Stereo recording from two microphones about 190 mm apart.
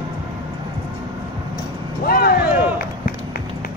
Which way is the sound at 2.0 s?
50° left (ahead or behind).